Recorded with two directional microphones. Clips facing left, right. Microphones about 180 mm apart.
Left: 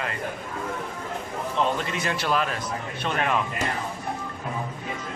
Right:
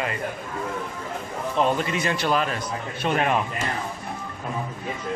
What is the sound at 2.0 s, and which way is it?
Speech, centre (ahead or behind).